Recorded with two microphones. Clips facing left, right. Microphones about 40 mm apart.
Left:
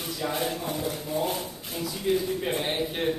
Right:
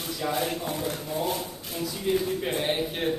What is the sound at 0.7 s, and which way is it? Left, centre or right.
Speech, right.